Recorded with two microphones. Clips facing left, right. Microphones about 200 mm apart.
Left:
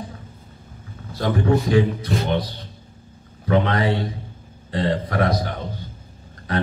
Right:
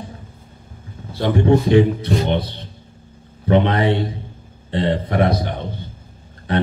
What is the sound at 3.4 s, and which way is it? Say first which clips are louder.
A man's voice: right 3 dB; 25° right (ahead or behind).